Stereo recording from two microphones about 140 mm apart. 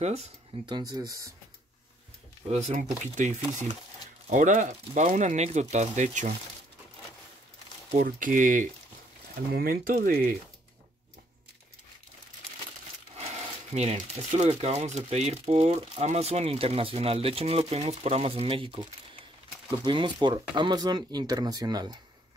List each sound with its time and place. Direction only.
0.0 s speech: 50° right (ahead or behind)
0.7 s speech: 30° right (ahead or behind)
2.4 s speech: 50° right (ahead or behind)
3.2 s speech: 60° right (ahead or behind)
8.0 s speech: 70° right (ahead or behind)
9.5 s speech: 90° right
13.1 s speech: 50° right (ahead or behind); by 21.9 s 30° right (ahead or behind)